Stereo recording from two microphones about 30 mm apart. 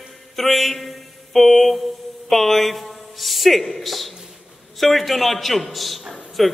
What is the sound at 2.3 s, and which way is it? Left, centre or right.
A man's voice, centre.